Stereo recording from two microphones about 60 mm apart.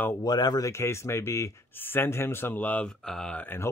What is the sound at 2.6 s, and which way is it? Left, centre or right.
Speech, left.